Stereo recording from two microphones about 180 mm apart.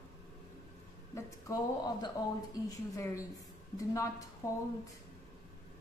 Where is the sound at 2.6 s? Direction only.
15° left (ahead or behind).